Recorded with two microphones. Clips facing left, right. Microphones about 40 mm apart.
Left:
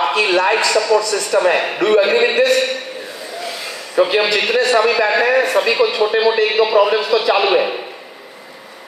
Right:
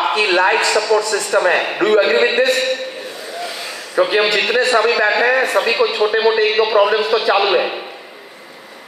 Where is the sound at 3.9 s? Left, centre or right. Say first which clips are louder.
Even; right.